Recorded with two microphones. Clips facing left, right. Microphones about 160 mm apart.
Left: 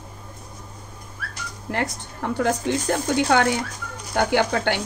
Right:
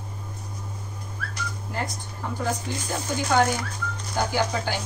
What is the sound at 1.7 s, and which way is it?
Speech, 75° left (ahead or behind).